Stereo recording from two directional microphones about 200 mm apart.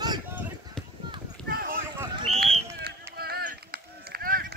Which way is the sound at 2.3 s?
30° right (ahead or behind).